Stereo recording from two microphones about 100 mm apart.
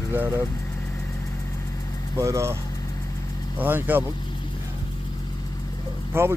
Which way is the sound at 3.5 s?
20° right (ahead or behind).